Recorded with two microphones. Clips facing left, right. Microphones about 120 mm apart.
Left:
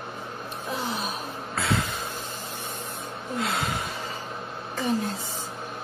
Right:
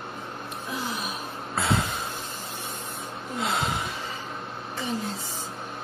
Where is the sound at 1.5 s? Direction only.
25° right (ahead or behind).